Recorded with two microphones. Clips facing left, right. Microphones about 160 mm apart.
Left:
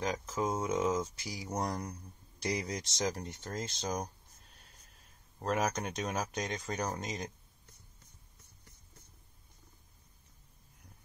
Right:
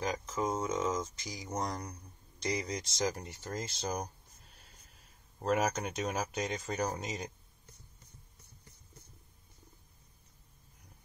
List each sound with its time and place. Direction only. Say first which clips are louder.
0.0 s speech: even; centre (ahead or behind)
0.7 s speech: left 2 dB; 15° left (ahead or behind); by 4.1 s 10° right (ahead or behind)
5.4 s speech: right 2 dB; 5° right (ahead or behind)